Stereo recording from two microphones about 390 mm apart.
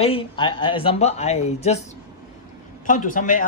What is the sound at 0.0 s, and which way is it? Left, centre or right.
Speech, centre.